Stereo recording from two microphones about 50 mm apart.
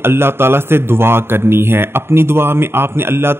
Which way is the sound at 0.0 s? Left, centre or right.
Right.